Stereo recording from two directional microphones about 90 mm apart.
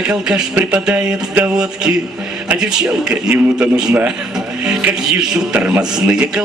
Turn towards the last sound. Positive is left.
turn(degrees=-10)  # may be behind; listen again after turning